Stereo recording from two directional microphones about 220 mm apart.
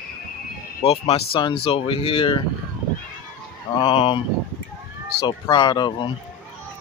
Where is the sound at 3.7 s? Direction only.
25° left (ahead or behind).